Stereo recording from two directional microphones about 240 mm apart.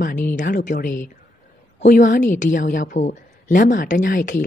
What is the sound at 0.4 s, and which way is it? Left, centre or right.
Speech, left.